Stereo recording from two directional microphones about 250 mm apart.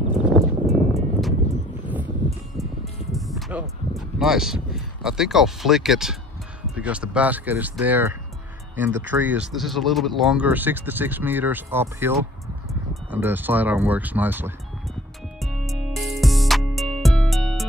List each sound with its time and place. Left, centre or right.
0.2 s music: centre
6.8 s speech: centre
15.4 s music: centre